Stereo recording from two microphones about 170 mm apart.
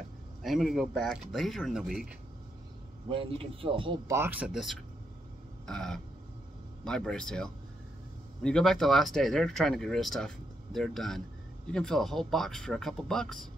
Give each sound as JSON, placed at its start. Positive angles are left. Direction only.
{"t": 0.4, "sound": "speech", "side_deg": 0}
{"t": 3.1, "sound": "speech", "side_deg": -30}
{"t": 4.1, "sound": "speech", "side_deg": -10}